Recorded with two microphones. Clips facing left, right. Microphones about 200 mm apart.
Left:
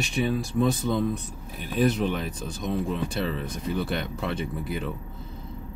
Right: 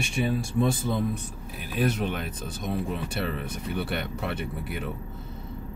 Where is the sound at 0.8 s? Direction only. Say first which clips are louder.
Left 2 dB; 5° right (ahead or behind).